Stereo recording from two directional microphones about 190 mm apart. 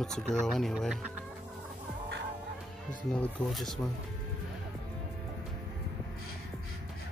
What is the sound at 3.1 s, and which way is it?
Speech, centre (ahead or behind).